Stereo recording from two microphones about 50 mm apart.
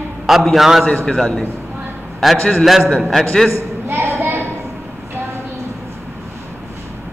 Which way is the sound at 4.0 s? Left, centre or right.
Right.